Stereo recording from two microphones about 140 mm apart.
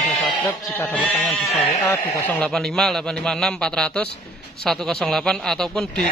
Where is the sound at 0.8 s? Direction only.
5° left (ahead or behind).